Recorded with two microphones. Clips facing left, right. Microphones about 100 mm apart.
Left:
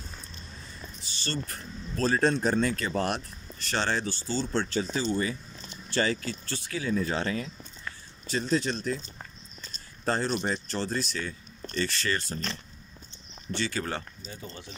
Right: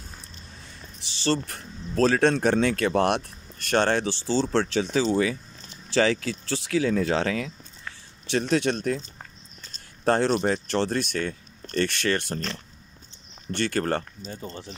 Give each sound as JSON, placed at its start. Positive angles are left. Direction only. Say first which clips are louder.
{"t": 1.0, "sound": "speech", "louder": "right 9 dB", "side_deg": -90}
{"t": 8.3, "sound": "speech", "louder": "right 4 dB", "side_deg": -70}
{"t": 10.0, "sound": "speech", "louder": "right 6 dB", "side_deg": -70}